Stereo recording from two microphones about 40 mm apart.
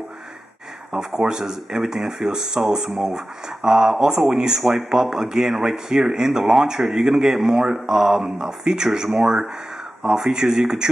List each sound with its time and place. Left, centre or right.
0.9 s speech: centre